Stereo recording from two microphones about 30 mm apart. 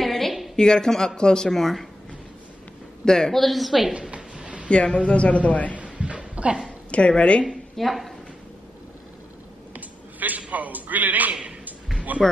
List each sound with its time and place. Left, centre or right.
0.0 s a sound: centre
0.6 s speech: left
1.5 s speech: centre
3.1 s speech: left
3.3 s a woman's voice: centre
4.6 s a man's voice: left
5.9 s a sound: right
6.9 s a woman's voice: left
7.7 s speech: centre
9.8 s a sound: right
12.2 s speech: centre